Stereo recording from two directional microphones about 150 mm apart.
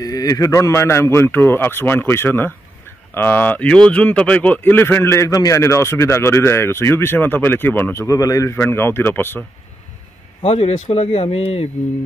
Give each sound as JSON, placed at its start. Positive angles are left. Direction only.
{"t": 0.0, "sound": "speech", "side_deg": 25}
{"t": 10.4, "sound": "speech", "side_deg": 45}